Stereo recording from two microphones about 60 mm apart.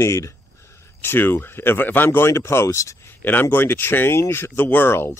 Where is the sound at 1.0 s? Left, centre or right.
Left.